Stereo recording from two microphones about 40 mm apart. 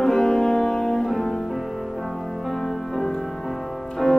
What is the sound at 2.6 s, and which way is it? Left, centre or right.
Music, centre.